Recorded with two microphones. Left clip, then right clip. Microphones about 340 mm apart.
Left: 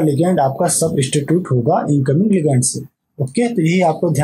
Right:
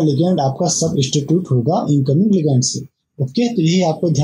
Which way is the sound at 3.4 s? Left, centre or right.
Left.